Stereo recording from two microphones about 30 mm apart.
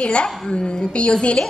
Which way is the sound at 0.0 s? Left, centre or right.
Left.